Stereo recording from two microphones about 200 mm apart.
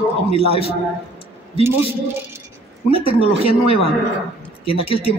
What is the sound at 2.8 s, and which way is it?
Speech, 30° left (ahead or behind).